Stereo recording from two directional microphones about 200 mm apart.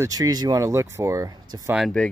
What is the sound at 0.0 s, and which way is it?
Speech, 15° right (ahead or behind).